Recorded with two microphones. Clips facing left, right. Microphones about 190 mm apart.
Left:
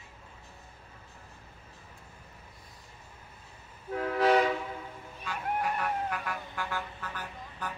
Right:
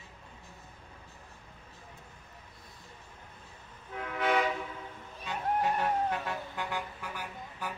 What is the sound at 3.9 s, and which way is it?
Vehicle, 35° left (ahead or behind).